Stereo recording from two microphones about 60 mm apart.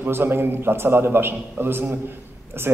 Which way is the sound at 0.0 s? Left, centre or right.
Right.